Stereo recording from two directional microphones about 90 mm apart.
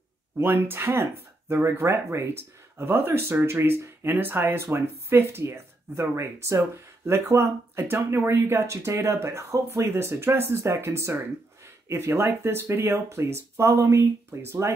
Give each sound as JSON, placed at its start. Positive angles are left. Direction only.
{"t": 0.4, "sound": "speech", "side_deg": -25}